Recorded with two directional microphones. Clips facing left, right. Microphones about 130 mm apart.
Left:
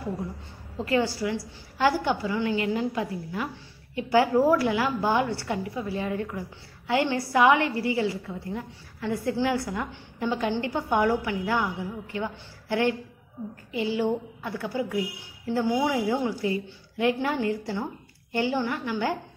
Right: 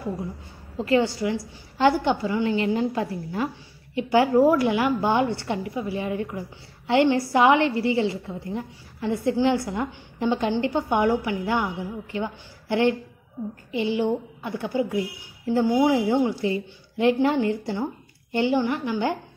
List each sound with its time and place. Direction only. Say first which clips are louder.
0.8 s a woman's voice: right 4 dB; 25° right (ahead or behind)
3.9 s a woman's voice: right 2 dB; 20° right (ahead or behind)